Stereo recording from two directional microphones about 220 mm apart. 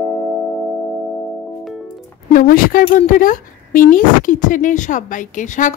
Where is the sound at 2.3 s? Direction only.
40° left (ahead or behind).